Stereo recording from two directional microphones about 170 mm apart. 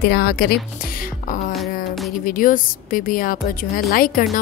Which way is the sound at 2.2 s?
55° left (ahead or behind).